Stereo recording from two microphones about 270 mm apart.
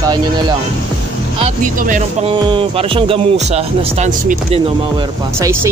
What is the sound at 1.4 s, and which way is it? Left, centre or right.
Speech, right.